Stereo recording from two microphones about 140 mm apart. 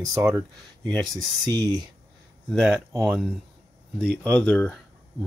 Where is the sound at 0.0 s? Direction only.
20° right (ahead or behind).